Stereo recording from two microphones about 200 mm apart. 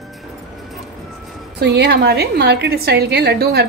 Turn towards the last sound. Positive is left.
turn(degrees=-55)  # may be behind; listen again after turning